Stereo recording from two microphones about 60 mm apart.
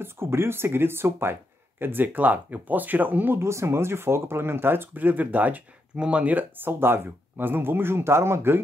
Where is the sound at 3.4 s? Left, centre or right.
Right.